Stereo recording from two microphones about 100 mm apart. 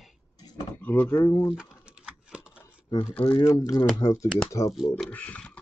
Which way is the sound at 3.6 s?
40° left (ahead or behind).